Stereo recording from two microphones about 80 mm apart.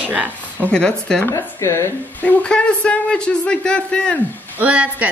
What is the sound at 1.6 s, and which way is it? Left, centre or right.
Speech, left.